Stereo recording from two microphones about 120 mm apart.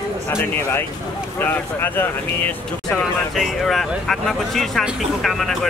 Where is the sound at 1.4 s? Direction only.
15° left (ahead or behind).